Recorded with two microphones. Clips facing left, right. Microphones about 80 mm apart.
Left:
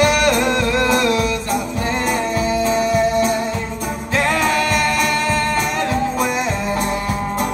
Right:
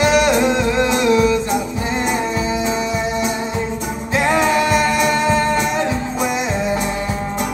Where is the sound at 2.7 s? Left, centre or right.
Left.